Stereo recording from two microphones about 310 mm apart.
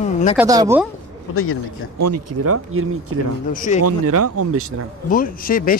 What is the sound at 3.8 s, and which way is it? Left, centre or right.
Speech, right.